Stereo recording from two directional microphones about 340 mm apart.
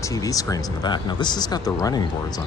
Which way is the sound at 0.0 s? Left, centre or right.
Centre.